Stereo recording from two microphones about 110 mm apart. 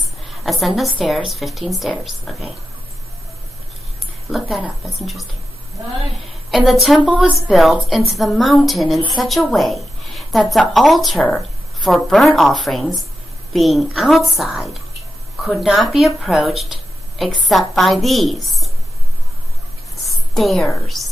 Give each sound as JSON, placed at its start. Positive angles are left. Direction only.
{"t": 0.3, "sound": "speech", "side_deg": 0}
{"t": 4.3, "sound": "speech", "side_deg": -5}
{"t": 6.5, "sound": "speech", "side_deg": 0}
{"t": 20.1, "sound": "a sound", "side_deg": 0}
{"t": 20.8, "sound": "a woman's voice", "side_deg": 0}